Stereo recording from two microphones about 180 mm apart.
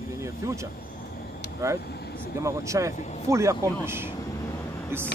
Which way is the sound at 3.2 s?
15° right (ahead or behind).